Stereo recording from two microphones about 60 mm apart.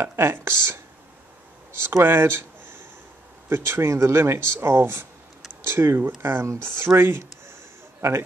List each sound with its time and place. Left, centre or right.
0.0 s speech: right
2.0 s a sound: right
3.4 s speech: right